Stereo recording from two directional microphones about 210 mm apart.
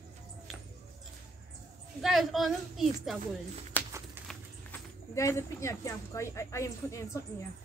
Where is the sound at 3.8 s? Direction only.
5° left (ahead or behind).